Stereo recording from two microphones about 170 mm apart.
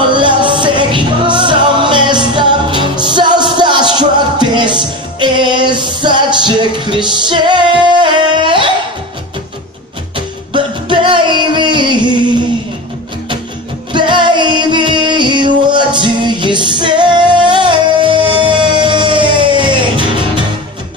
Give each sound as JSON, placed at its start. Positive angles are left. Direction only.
{"t": 0.1, "sound": "music", "side_deg": -30}
{"t": 10.1, "sound": "music", "side_deg": -30}
{"t": 13.9, "sound": "music", "side_deg": -25}